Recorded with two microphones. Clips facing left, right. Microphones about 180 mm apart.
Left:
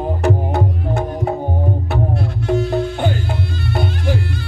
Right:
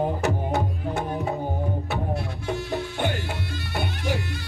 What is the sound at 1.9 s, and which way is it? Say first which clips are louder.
Music: left 7 dB; 60° left (ahead or behind).